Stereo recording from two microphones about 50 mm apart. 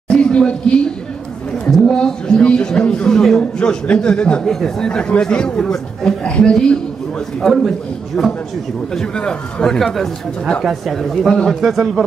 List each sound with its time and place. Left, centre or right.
0.1 s a sound: centre
1.7 s speech: centre
2.0 s speech: centre
3.5 s speech: left
4.5 s speech: centre
7.4 s speech: centre
9.8 s speech: centre